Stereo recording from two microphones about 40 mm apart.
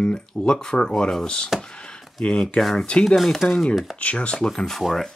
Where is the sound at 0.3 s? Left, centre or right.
Centre.